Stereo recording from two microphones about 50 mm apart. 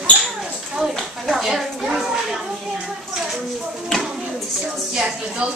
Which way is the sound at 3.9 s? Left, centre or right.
Centre.